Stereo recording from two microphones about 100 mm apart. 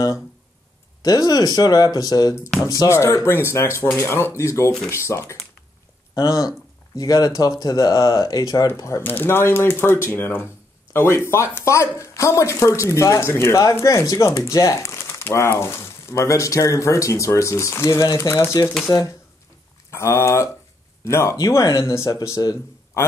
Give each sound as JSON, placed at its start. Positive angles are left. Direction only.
{"t": 1.0, "sound": "speech", "side_deg": 40}
{"t": 6.1, "sound": "speech", "side_deg": 40}
{"t": 9.0, "sound": "speech", "side_deg": 20}